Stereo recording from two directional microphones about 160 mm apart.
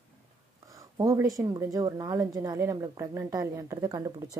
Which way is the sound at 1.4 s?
20° right (ahead or behind).